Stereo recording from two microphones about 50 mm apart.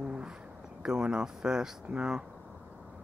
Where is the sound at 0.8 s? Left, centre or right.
Centre.